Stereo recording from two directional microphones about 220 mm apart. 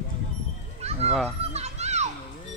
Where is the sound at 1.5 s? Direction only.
30° right (ahead or behind).